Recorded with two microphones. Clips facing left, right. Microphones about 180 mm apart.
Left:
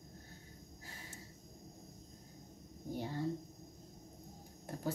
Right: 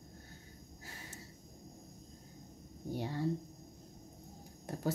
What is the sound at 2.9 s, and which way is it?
Speech, 70° right (ahead or behind).